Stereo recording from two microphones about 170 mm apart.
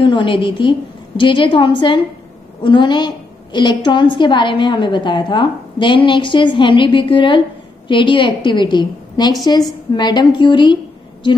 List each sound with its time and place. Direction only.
0.0 s a woman's voice: 30° left (ahead or behind)